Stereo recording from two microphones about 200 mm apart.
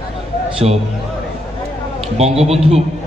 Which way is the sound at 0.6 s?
30° right (ahead or behind).